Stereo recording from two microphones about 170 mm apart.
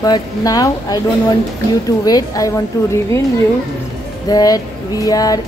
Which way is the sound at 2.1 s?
20° left (ahead or behind).